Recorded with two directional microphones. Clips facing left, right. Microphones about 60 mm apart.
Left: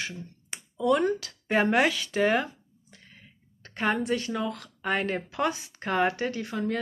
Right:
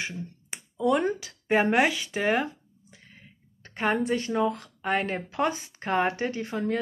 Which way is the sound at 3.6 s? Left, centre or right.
Centre.